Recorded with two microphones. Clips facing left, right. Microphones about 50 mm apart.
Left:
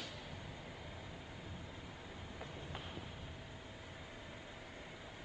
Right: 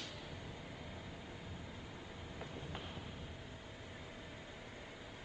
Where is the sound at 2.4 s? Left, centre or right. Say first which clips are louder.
Right 1 dB; centre.